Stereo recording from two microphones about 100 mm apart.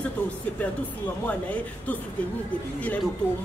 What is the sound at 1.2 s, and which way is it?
Speech, 15° left (ahead or behind).